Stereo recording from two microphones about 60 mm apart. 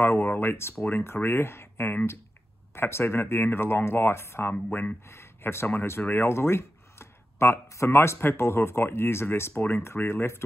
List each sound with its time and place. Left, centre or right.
0.0 s speech: left
4.6 s speech: left
5.0 s speech: left
7.6 s speech: left